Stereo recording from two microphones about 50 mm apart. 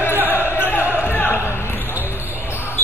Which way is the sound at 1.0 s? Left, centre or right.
Left.